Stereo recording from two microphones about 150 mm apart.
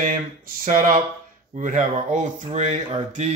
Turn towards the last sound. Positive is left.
turn(degrees=-50)  # may be behind; listen again after turning